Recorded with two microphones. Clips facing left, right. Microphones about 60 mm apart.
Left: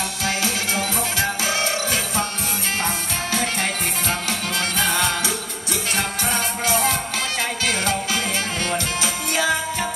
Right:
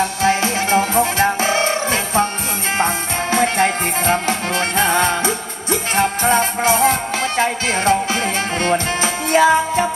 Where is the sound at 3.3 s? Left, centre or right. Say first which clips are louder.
Right 9 dB; right.